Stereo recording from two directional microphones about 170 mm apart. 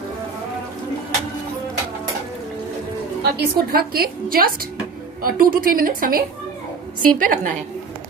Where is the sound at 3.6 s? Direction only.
60° right (ahead or behind).